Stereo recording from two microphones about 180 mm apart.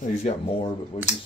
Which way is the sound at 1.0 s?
35° left (ahead or behind).